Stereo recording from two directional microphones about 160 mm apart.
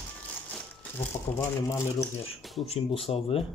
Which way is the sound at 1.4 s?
20° left (ahead or behind).